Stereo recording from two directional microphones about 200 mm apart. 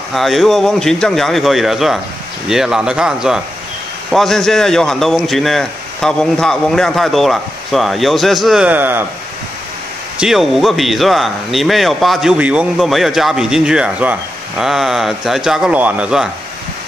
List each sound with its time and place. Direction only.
0.1 s a man's voice: centre (ahead or behind)
10.1 s a man's voice: centre (ahead or behind)